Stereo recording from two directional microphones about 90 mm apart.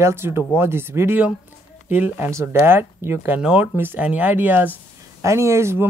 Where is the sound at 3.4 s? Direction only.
10° right (ahead or behind).